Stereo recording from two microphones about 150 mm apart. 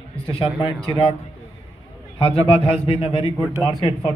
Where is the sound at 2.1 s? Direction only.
35° left (ahead or behind).